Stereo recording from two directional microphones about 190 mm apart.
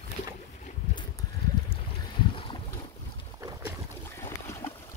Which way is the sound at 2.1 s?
25° left (ahead or behind).